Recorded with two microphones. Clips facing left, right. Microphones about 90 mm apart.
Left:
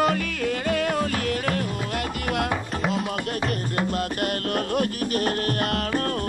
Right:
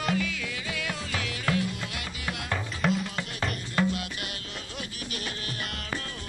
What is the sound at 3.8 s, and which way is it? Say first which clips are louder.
Music: left 7 dB; 50° left (ahead or behind).